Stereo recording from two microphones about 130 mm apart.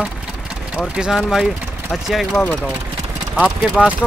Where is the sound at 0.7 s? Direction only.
5° right (ahead or behind).